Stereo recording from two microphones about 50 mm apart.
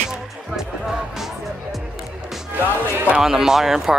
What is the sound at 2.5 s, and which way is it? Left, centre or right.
Music, right.